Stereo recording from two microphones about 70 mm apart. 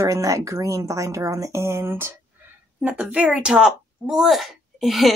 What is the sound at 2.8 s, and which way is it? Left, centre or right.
A woman's voice, centre.